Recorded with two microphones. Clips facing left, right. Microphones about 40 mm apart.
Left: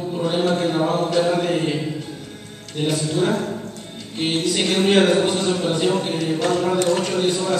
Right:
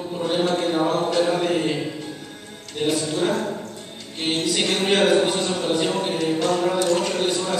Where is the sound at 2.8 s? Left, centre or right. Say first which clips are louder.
Left 1 dB; centre.